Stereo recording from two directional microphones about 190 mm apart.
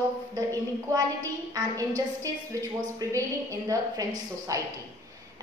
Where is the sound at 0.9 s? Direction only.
20° right (ahead or behind).